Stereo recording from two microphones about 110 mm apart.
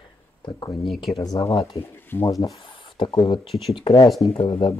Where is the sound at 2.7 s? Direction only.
50° left (ahead or behind).